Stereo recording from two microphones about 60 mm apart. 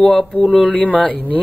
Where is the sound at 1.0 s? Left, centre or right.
Left.